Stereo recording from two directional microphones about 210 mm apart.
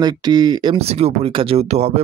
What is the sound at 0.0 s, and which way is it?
Speech, 20° right (ahead or behind).